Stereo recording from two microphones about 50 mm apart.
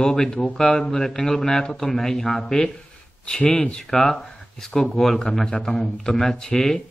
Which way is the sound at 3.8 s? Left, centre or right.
Centre.